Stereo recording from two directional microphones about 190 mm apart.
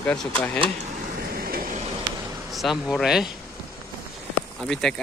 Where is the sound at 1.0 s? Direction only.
55° right (ahead or behind).